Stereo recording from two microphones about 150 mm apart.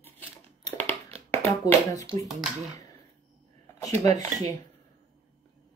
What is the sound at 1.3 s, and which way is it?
Speech, 15° left (ahead or behind).